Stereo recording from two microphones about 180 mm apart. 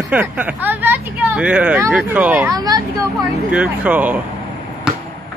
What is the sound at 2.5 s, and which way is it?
Speech, 20° right (ahead or behind).